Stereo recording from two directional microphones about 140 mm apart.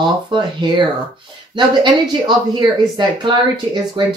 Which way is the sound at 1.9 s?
35° right (ahead or behind).